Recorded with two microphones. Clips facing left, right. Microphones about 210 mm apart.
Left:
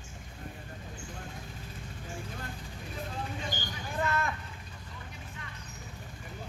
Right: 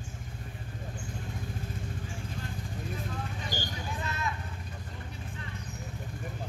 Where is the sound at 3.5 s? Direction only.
55° left (ahead or behind).